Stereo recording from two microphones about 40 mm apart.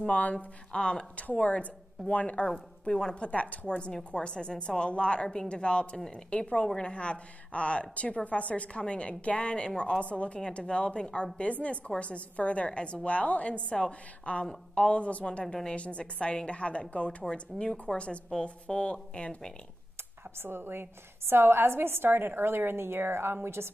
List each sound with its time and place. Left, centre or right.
0.1 s a woman's voice: left
0.7 s a woman's voice: left
1.1 s a woman's voice: left
2.9 s speech: centre
3.2 s a woman's voice: left
5.9 s speech: centre
6.3 s a woman's voice: left
9.6 s a woman's voice: left
17.2 s a woman's voice: centre
20.4 s a woman's voice: right